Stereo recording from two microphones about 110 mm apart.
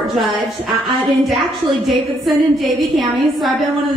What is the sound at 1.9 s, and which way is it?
A woman's voice, centre (ahead or behind).